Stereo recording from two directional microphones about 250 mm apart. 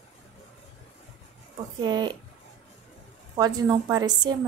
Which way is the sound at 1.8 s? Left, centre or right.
Centre.